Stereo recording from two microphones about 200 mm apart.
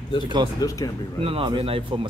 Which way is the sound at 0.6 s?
15° left (ahead or behind).